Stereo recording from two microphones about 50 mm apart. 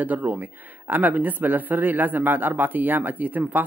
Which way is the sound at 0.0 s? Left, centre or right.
Right.